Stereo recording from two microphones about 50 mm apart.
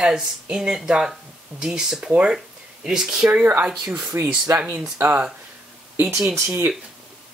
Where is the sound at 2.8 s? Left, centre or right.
Centre.